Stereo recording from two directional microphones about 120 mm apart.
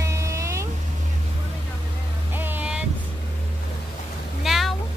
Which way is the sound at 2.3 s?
15° right (ahead or behind).